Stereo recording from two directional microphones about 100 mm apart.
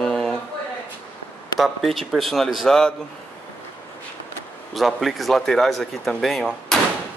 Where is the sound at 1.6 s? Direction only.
Centre (ahead or behind).